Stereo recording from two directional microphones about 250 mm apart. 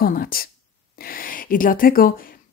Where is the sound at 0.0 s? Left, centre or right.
Left.